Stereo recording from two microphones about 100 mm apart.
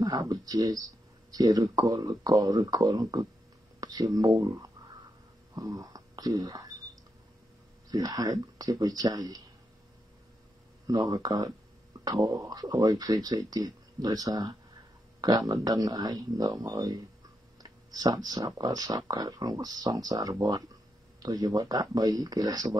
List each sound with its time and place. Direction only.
0.0 s speech: 40° right (ahead or behind)
5.8 s speech: 40° right (ahead or behind)
7.9 s speech: 40° right (ahead or behind)
10.9 s speech: 45° right (ahead or behind)